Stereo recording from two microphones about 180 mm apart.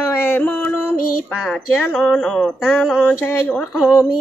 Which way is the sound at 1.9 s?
5° left (ahead or behind).